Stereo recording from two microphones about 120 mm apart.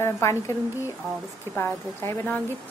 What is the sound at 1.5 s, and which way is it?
Speech, 20° left (ahead or behind).